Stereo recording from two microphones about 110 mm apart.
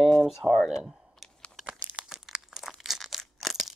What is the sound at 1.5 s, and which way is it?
Crumpling, 5° right (ahead or behind).